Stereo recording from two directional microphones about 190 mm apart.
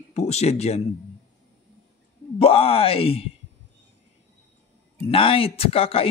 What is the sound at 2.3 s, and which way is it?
Speech, 30° left (ahead or behind).